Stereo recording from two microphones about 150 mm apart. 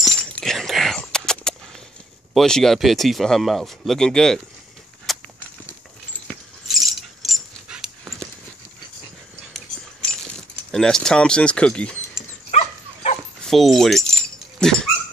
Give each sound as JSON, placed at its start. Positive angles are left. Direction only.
{"t": 0.0, "sound": "breaking", "side_deg": 0}
{"t": 2.3, "sound": "speech", "side_deg": 5}
{"t": 5.1, "sound": "a sound", "side_deg": 0}
{"t": 6.2, "sound": "dog", "side_deg": 0}
{"t": 10.5, "sound": "speech", "side_deg": 5}
{"t": 12.4, "sound": "dog", "side_deg": 45}
{"t": 13.5, "sound": "dog", "side_deg": 0}